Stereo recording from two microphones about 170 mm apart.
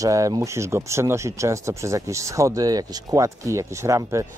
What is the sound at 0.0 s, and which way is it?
Speech, 20° right (ahead or behind).